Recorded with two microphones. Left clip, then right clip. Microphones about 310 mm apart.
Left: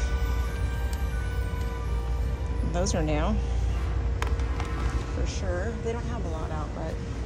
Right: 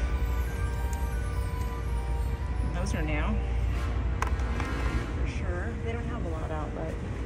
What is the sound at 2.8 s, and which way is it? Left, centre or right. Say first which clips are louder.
Speech: left 5 dB; centre.